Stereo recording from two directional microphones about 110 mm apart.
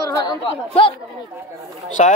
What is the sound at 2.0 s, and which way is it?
Speech, 90° left.